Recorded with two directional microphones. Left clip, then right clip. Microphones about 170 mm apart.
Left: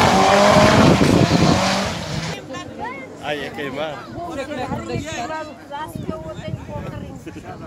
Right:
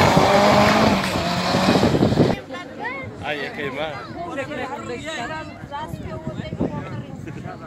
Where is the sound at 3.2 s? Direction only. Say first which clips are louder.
Left 2 dB; 55° left (ahead or behind).